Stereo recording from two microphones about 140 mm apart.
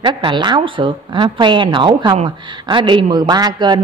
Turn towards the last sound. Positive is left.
turn(degrees=-30)  # may be behind; listen again after turning